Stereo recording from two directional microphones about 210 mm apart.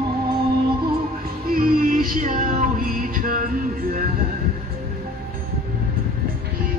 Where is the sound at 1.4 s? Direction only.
45° right (ahead or behind).